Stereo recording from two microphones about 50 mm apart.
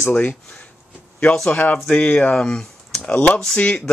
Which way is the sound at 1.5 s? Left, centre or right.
Left.